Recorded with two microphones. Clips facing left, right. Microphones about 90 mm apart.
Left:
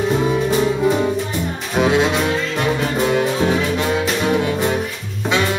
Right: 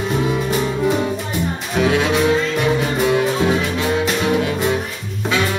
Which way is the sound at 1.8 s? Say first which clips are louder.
Left 1 dB; 20° left (ahead or behind).